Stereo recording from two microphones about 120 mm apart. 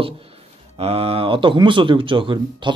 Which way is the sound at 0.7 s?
55° right (ahead or behind).